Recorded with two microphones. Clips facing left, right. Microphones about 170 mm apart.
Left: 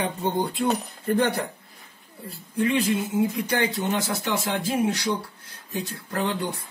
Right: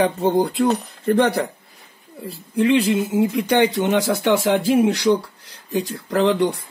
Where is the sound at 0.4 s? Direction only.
85° right.